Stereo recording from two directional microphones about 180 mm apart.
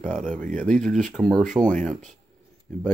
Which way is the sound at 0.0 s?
45° right (ahead or behind).